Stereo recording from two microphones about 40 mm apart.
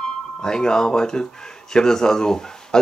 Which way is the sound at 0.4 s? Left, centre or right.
Centre.